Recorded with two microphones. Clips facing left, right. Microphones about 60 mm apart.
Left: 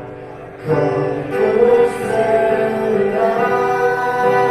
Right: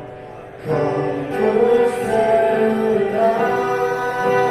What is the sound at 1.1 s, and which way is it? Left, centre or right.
Music, left.